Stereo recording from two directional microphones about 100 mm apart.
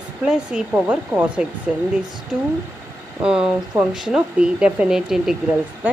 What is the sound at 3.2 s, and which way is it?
Speech, 10° right (ahead or behind).